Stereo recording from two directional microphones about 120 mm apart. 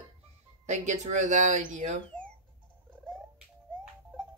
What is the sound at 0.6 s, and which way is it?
Speech, 75° right (ahead or behind).